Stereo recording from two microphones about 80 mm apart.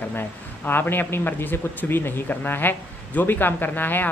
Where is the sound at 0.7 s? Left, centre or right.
Left.